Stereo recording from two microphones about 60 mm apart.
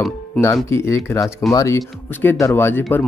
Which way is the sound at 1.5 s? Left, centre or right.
Left.